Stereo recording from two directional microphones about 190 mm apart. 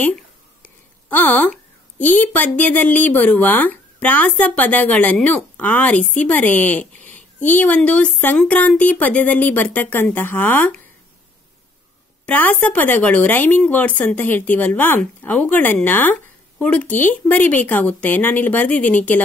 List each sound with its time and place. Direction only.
0.0 s speech: 5° left (ahead or behind)
12.3 s speech: 10° left (ahead or behind)